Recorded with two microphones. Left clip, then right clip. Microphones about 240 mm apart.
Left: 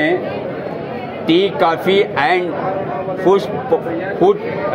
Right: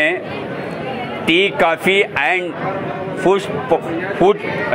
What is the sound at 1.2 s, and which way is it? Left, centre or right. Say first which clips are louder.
A man's voice: even; right.